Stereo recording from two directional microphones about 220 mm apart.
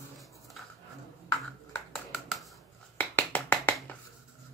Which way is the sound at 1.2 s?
5° left (ahead or behind).